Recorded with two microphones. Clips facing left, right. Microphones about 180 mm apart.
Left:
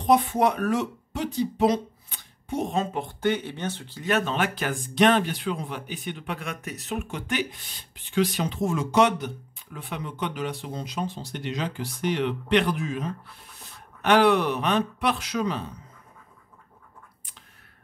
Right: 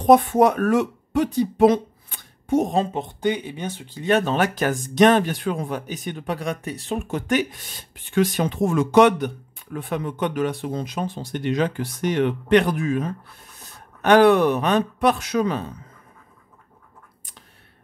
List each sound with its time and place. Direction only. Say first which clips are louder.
0.0 s speech: right 6 dB; 50° right (ahead or behind)
2.9 s speech: right 2 dB; 20° right (ahead or behind)
4.1 s speech: right 5 dB; 40° right (ahead or behind)
7.1 s speech: right 10 dB; 45° right (ahead or behind)